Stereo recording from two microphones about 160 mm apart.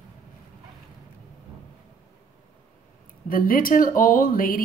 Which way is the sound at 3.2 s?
60° left (ahead or behind).